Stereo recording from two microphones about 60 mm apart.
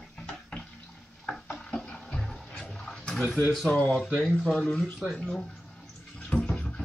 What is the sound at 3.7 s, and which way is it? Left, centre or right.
Speech, left.